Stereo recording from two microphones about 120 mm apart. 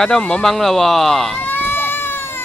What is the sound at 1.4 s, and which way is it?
Goat, 15° left (ahead or behind).